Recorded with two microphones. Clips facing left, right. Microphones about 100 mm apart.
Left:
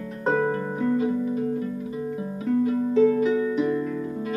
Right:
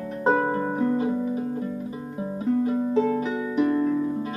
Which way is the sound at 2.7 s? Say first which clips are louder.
Left 3 dB; 30° right (ahead or behind).